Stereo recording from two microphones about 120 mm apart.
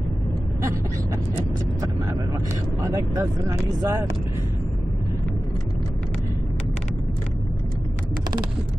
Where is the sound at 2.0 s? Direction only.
25° right (ahead or behind).